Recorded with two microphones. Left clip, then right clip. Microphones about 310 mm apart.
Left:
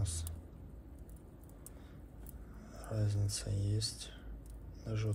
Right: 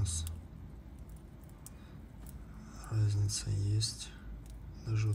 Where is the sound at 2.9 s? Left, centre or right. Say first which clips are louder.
Right 1 dB; right.